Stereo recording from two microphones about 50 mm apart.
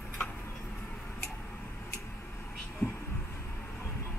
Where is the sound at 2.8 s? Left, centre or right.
Left.